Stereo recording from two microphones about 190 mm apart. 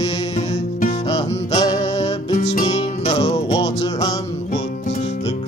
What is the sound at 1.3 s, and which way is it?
Music, 20° left (ahead or behind).